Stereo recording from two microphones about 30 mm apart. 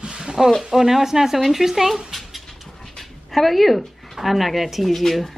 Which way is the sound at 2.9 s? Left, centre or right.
Centre.